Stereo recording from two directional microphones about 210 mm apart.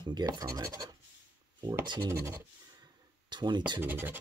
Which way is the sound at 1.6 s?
20° right (ahead or behind).